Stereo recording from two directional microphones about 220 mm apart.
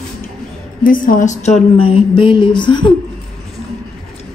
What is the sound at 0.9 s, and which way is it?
A woman's voice, 35° left (ahead or behind).